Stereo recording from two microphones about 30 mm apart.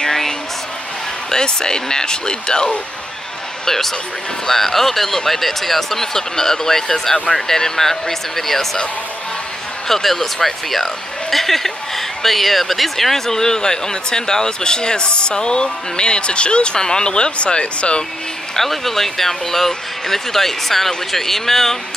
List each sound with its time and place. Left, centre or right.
1.3 s speech: left
3.6 s speech: centre
9.8 s speech: centre; by 18.0 s left
18.6 s speech: centre